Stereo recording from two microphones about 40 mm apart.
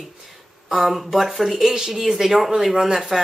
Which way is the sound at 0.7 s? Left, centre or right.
Centre.